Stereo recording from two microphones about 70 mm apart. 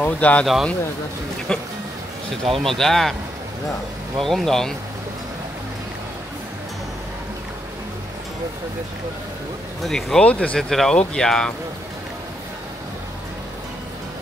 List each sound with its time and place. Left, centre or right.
0.0 s speech: left
1.5 s speech: centre
4.2 s speech: centre
9.8 s speech: centre
10.2 s speech: centre
10.6 s speech: centre